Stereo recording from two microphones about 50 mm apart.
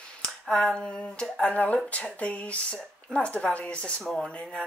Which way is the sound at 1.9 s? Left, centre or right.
Left.